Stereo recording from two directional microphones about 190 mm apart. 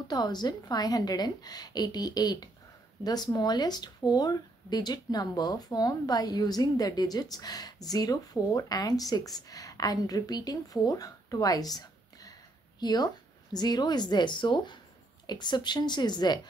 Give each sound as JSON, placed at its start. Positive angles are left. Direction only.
{"t": 0.1, "sound": "speech", "side_deg": 20}